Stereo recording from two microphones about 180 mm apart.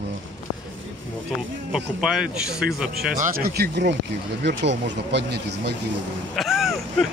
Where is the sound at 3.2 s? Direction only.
60° right (ahead or behind).